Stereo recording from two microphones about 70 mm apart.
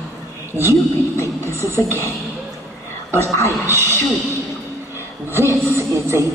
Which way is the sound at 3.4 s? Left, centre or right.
Right.